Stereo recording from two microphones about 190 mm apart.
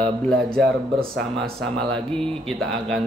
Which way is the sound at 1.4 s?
5° left (ahead or behind).